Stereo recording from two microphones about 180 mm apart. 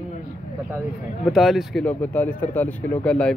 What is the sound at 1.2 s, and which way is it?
Speech, centre (ahead or behind).